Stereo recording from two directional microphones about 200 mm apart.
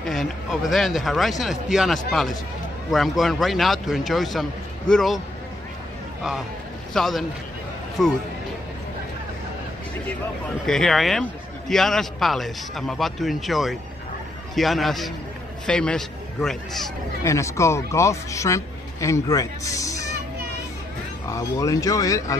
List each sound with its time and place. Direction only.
0.0 s a man's voice: centre (ahead or behind)
6.9 s a man's voice: centre (ahead or behind)
10.7 s a man's voice: centre (ahead or behind)
17.2 s speech: 15° left (ahead or behind)
21.3 s speech: 15° left (ahead or behind)